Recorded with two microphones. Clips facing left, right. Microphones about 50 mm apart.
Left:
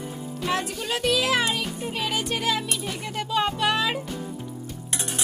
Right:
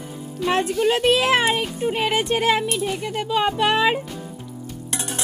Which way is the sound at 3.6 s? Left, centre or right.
Right.